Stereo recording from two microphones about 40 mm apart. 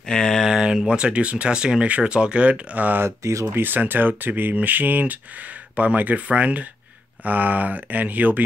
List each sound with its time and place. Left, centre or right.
0.0 s a sound: centre
0.5 s speech: centre
1.9 s speech: right
3.5 s speech: right